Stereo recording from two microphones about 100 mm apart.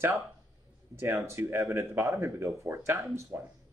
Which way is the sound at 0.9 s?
25° right (ahead or behind).